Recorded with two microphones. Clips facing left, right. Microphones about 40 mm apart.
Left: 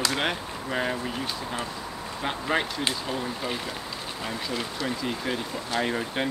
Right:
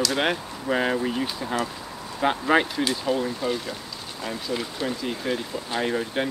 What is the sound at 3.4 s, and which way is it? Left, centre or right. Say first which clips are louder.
Speech: right 3 dB; centre.